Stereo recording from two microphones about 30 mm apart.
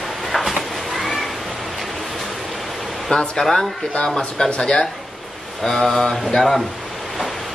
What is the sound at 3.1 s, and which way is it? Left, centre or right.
Speech, left.